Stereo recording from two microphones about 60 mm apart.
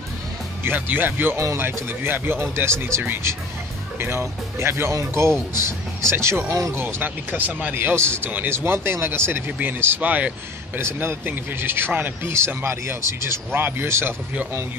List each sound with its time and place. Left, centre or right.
0.7 s speech: right
10.8 s speech: right